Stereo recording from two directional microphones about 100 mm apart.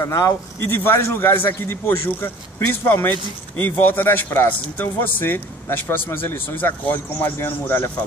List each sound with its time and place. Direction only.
0.0 s speech: 30° left (ahead or behind)
0.7 s a man's voice: 20° left (ahead or behind)